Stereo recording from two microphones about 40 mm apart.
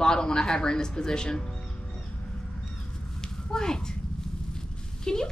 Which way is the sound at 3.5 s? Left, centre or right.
Centre.